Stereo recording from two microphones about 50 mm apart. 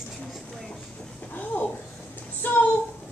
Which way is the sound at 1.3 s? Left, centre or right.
Left.